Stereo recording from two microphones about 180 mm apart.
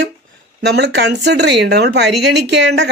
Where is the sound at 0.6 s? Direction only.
70° right (ahead or behind).